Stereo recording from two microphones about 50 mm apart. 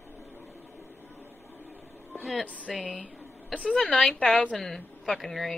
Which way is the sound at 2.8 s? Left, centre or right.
Left.